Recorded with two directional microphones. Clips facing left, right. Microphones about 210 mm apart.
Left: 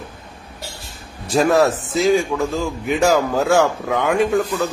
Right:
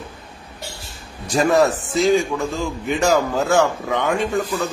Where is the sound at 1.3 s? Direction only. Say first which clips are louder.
Left 1 dB; centre (ahead or behind).